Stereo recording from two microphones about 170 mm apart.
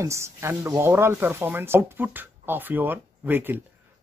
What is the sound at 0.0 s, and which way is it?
Speech, 15° right (ahead or behind).